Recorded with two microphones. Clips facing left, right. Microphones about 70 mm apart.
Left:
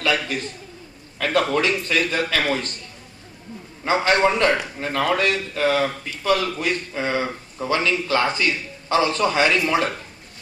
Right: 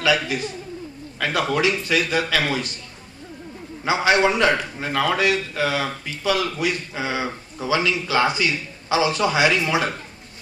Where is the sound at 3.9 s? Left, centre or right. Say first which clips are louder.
Even; left.